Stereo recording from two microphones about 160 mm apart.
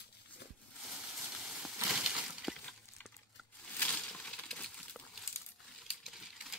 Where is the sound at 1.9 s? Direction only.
5° right (ahead or behind).